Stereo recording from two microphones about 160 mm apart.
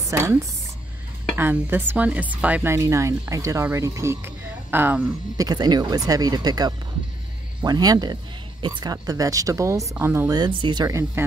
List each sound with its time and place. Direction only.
0.1 s speech: 20° right (ahead or behind)
5.4 s speech: 25° right (ahead or behind)